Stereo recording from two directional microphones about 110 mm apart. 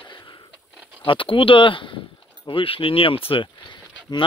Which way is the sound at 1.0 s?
50° left (ahead or behind).